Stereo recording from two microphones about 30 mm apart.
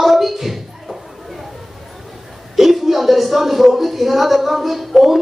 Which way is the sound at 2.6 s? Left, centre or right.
Centre.